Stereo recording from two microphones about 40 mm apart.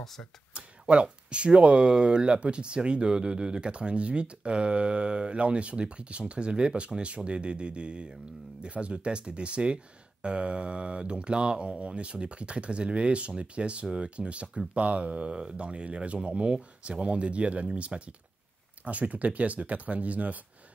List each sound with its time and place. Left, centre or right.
0.6 s speech: right